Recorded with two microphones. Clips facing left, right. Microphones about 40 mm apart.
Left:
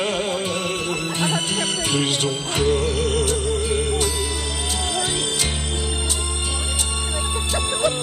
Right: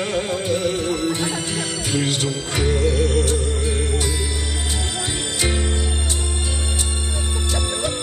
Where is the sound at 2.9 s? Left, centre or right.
Left.